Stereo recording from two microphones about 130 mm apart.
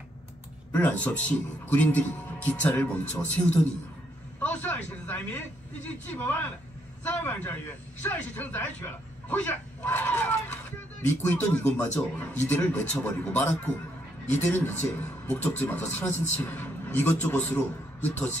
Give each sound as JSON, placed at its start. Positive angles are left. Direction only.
{"t": 0.7, "sound": "a man's voice", "side_deg": 15}